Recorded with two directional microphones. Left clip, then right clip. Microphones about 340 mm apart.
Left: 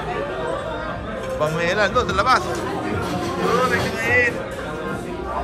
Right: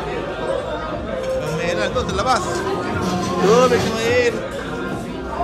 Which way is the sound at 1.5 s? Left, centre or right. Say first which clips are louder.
Left 4 dB; centre.